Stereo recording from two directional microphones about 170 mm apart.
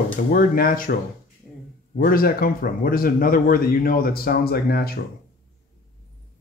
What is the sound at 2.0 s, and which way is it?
Speech, 60° left (ahead or behind).